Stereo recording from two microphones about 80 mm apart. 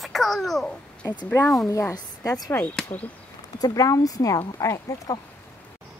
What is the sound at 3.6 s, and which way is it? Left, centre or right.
Speech, left.